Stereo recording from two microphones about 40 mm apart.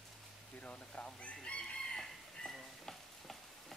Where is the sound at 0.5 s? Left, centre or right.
Left.